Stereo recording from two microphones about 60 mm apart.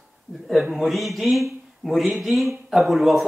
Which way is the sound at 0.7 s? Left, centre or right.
Centre.